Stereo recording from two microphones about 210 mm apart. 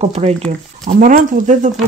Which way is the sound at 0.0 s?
30° right (ahead or behind).